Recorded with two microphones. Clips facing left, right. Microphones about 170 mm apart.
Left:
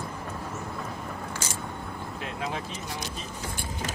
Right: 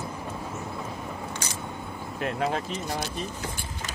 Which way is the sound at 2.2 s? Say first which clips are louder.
Right 7 dB; 55° right (ahead or behind).